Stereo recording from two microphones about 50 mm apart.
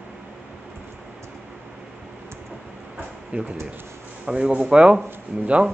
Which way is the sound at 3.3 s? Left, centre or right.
Right.